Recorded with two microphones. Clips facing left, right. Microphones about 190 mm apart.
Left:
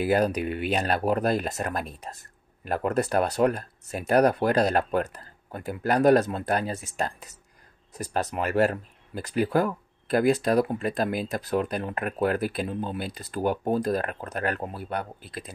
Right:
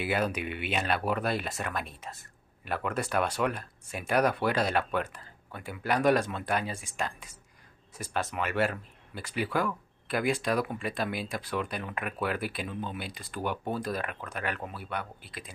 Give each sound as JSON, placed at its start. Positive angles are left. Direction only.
{"t": 0.0, "sound": "speech", "side_deg": 40}